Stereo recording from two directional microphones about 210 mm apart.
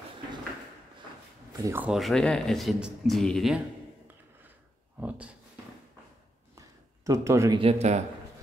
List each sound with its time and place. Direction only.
1.5 s speech: 15° right (ahead or behind)
5.0 s a sound: 5° right (ahead or behind)
7.1 s speech: 15° right (ahead or behind)
7.6 s a man's voice: 30° right (ahead or behind)